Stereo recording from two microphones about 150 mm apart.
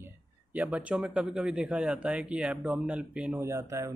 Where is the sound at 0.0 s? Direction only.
10° right (ahead or behind).